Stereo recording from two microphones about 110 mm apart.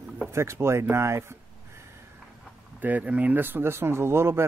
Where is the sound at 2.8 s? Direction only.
15° right (ahead or behind).